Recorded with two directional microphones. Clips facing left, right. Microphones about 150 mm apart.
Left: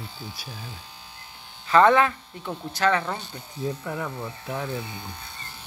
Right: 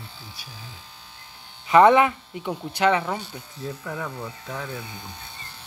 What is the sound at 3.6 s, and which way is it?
Speech, 10° left (ahead or behind).